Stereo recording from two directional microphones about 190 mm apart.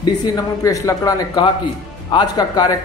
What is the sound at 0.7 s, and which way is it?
A man's voice, 15° left (ahead or behind).